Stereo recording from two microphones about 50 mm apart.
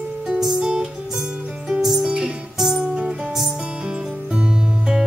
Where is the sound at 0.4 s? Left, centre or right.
Centre.